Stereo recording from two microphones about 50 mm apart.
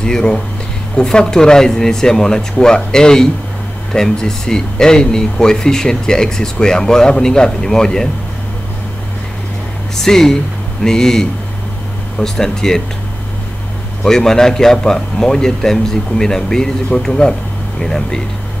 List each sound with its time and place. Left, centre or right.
0.0 s speech: centre
10.0 s speech: centre
14.0 s speech: centre